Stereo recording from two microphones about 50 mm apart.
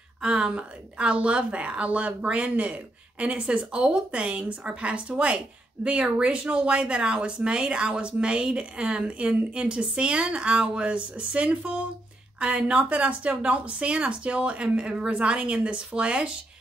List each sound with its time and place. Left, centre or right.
0.2 s speech: centre